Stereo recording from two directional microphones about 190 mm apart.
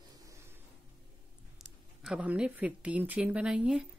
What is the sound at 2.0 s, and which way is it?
Speech, 5° right (ahead or behind).